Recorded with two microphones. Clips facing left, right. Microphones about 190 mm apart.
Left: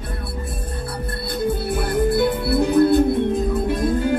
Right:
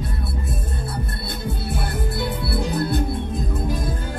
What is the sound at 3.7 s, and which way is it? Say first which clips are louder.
Music: left 7 dB; 65° left (ahead or behind).